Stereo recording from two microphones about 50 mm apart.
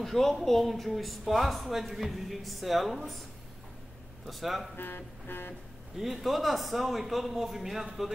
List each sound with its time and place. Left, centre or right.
0.0 s speech: centre
4.3 s speech: centre
4.7 s speech: left
5.9 s speech: centre